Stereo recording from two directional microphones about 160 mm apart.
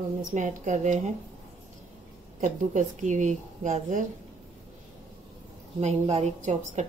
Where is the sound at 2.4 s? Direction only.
50° right (ahead or behind).